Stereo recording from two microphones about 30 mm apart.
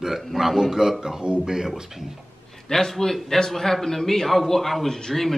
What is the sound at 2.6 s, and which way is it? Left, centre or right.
A man's voice, centre.